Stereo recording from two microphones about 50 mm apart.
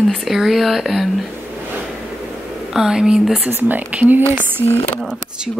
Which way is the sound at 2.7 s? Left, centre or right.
Centre.